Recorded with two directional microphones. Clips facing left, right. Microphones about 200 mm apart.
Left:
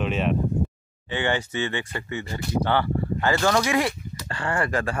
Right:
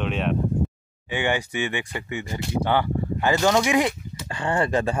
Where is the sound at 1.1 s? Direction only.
15° right (ahead or behind).